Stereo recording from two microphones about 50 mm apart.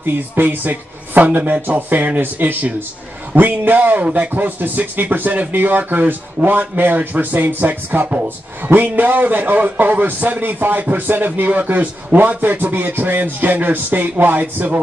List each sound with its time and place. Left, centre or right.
0.0 s a man's voice: right